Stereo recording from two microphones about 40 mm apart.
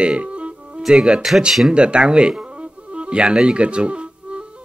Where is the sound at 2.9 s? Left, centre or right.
Right.